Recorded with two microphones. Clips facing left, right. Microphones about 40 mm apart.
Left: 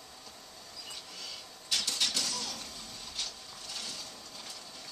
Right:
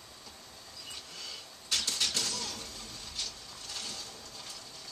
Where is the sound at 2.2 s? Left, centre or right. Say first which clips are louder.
Even; right.